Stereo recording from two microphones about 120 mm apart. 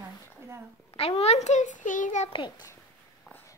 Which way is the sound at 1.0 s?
60° left (ahead or behind).